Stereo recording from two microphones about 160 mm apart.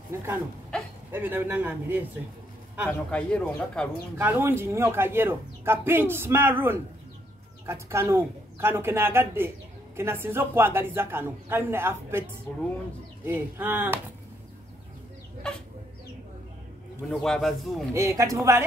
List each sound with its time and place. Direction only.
0.1 s speech: 15° right (ahead or behind)
2.9 s speech: 5° left (ahead or behind)
4.2 s speech: 10° right (ahead or behind)
17.1 s speech: 5° left (ahead or behind)
17.9 s speech: 20° right (ahead or behind)